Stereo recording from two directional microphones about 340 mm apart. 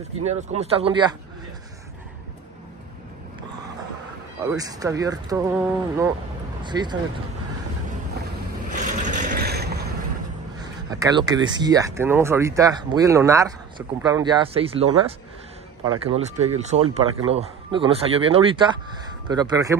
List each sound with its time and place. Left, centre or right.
0.2 s speech: centre
4.5 s speech: centre
9.0 s vehicle: right
10.6 s speech: centre
16.2 s speech: centre